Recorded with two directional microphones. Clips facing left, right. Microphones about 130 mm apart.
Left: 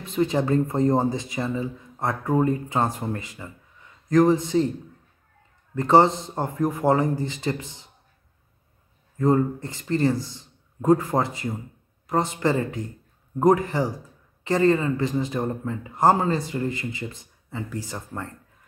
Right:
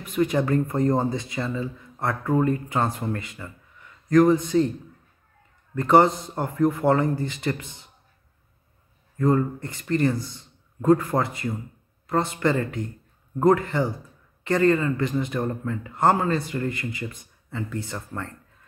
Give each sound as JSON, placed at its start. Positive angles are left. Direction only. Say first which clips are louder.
{"t": 0.0, "sound": "speech", "louder": "even", "side_deg": 25}
{"t": 5.8, "sound": "speech", "louder": "even", "side_deg": 25}
{"t": 9.1, "sound": "speech", "louder": "left 1 dB", "side_deg": 20}